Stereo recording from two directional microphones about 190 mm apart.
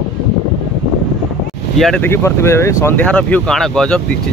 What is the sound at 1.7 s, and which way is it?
Speech, centre (ahead or behind).